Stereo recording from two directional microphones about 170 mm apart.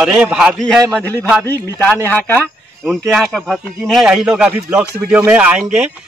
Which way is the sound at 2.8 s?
Centre (ahead or behind).